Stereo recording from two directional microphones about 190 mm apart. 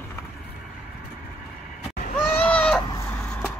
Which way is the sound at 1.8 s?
45° left (ahead or behind).